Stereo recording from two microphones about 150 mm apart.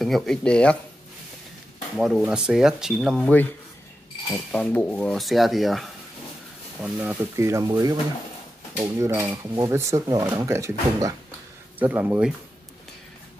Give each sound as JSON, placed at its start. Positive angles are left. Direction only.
{"t": 0.0, "sound": "speech", "side_deg": 5}
{"t": 2.0, "sound": "speech", "side_deg": -5}
{"t": 3.3, "sound": "speech", "side_deg": 10}
{"t": 6.8, "sound": "speech", "side_deg": -10}